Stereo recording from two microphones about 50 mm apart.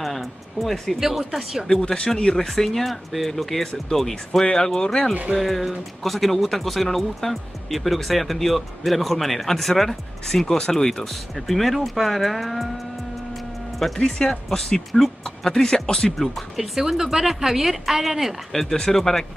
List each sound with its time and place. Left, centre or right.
0.0 s speech: centre
1.7 s speech: centre
5.1 s speech: right
5.4 s speech: centre
13.9 s speech: centre
16.3 s speech: centre